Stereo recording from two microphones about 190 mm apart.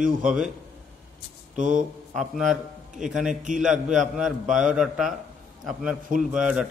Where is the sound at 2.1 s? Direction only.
Centre (ahead or behind).